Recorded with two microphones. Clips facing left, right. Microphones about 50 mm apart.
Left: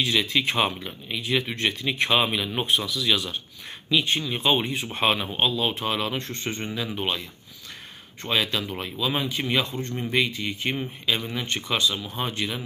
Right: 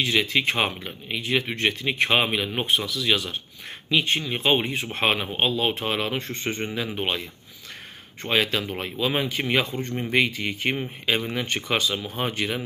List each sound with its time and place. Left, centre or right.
0.0 s speech: right
8.3 s speech: right